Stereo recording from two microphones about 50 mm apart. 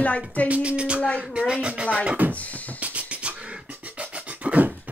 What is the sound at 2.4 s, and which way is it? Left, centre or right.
Beatboxing, left.